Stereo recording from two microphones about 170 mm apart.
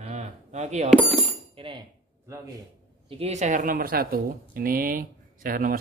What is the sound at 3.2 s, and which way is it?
A woman's voice, 40° right (ahead or behind).